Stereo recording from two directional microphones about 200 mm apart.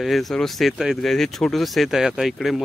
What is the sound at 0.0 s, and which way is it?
Speech, centre (ahead or behind).